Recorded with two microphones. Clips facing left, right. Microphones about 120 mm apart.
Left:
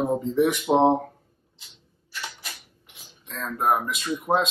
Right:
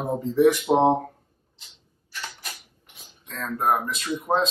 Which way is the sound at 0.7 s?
Centre (ahead or behind).